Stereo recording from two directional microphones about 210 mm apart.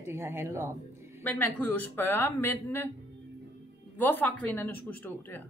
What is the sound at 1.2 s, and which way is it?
Speech, 10° left (ahead or behind).